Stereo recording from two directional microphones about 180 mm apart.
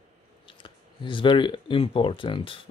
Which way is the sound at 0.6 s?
30° left (ahead or behind).